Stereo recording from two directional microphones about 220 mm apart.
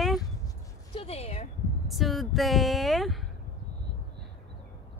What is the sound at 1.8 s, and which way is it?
Speech, centre (ahead or behind).